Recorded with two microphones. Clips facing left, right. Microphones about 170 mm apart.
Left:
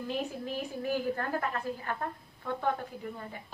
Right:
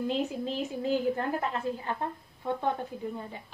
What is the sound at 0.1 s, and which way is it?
A woman's voice, 20° right (ahead or behind).